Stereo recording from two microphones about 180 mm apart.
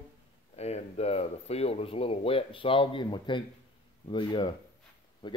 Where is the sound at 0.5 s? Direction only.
35° left (ahead or behind).